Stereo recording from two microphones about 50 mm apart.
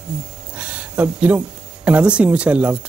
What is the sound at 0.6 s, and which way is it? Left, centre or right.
Speech, right.